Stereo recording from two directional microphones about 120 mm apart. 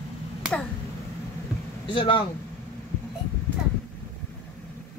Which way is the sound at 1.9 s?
45° left (ahead or behind).